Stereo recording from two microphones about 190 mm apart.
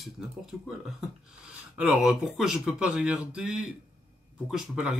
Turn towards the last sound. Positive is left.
turn(degrees=-5)  # may be behind; listen again after turning